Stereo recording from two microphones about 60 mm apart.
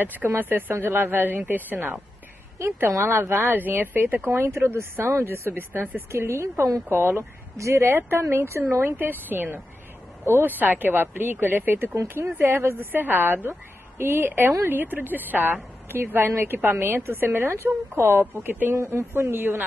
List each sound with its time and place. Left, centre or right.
0.0 s speech: right
2.6 s speech: right
3.1 s speech: right
6.9 s speech: right
9.3 s speech: right
18.7 s speech: right